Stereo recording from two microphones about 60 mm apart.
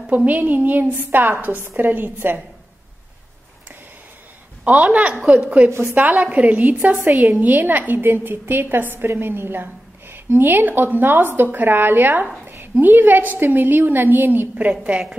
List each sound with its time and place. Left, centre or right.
0.1 s a woman's voice: right
4.6 s a woman's voice: right
7.0 s a woman's voice: right